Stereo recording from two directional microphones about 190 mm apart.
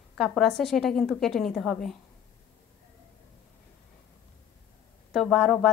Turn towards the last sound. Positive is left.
turn(degrees=0)  # may be behind; listen again after turning